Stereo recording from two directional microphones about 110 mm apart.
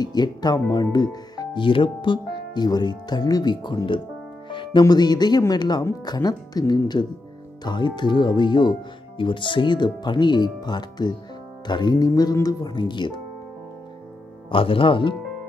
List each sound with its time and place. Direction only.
0.0 s speech: 40° left (ahead or behind)
14.5 s speech: 55° left (ahead or behind)